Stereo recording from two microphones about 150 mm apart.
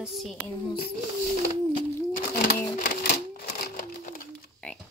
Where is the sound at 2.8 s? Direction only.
70° left (ahead or behind); by 3.8 s 90° left.